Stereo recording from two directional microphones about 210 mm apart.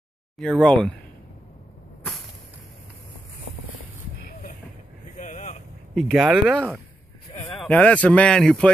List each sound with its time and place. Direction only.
0.4 s speech: 5° left (ahead or behind)
5.1 s vehicle: 35° left (ahead or behind)
5.9 s speech: 5° left (ahead or behind)